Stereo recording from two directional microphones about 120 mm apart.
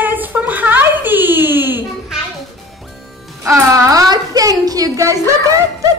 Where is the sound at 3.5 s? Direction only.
25° right (ahead or behind).